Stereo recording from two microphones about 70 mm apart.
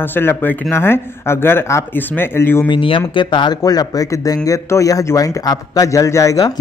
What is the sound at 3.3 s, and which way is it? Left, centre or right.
Speech, left.